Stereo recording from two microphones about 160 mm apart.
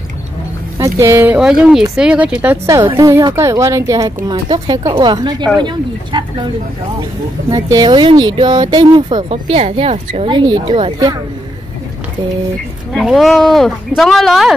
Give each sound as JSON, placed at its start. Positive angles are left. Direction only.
{"t": 0.7, "sound": "speech", "side_deg": -20}
{"t": 1.4, "sound": "speech", "side_deg": -5}
{"t": 2.9, "sound": "speech", "side_deg": -20}
{"t": 7.5, "sound": "speech", "side_deg": -25}
{"t": 9.3, "sound": "a woman's voice", "side_deg": -40}
{"t": 12.9, "sound": "speech", "side_deg": 0}